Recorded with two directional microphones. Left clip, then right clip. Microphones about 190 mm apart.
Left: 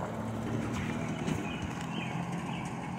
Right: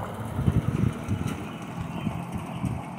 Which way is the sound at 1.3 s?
55° right (ahead or behind).